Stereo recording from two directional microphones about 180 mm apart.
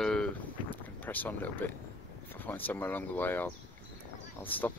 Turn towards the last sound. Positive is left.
turn(degrees=10)  # may be behind; listen again after turning